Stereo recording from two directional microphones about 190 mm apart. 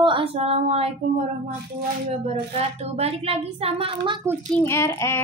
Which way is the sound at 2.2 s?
35° right (ahead or behind).